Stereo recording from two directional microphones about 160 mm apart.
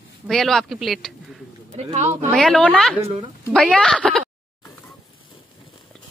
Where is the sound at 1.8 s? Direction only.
45° right (ahead or behind).